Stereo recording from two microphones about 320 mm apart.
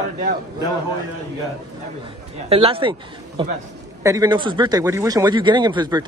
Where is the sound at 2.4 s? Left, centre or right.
Centre.